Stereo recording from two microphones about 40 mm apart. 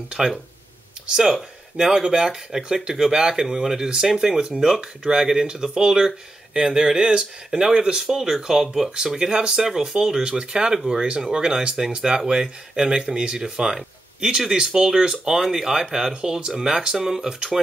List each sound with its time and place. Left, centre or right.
0.2 s speech: centre
9.7 s speech: centre